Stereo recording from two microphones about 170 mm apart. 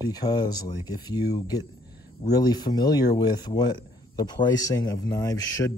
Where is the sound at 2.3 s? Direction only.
25° left (ahead or behind).